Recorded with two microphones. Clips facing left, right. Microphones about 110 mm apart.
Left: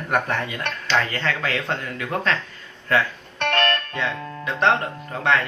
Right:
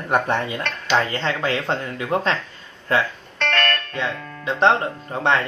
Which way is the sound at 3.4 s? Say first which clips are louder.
Left 1 dB; 15° left (ahead or behind).